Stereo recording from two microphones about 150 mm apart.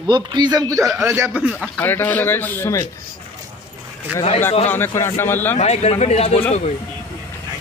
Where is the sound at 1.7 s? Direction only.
15° left (ahead or behind).